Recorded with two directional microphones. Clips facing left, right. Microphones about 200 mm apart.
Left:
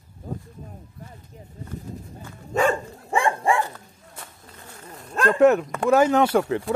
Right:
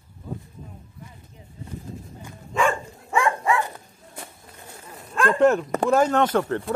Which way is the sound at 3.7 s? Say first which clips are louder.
Right 2 dB; 15° right (ahead or behind).